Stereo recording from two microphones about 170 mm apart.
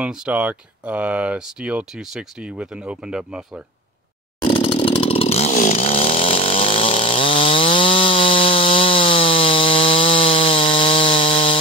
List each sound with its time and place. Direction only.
0.0 s speech: 5° right (ahead or behind)
4.5 s chainsaw: 30° left (ahead or behind)